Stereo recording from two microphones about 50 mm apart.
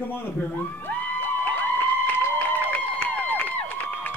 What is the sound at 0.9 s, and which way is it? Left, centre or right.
Music, left.